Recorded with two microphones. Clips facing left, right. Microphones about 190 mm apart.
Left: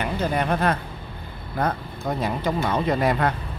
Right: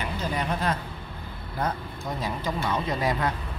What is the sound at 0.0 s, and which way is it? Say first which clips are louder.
Speech: left 6 dB; 60° left (ahead or behind).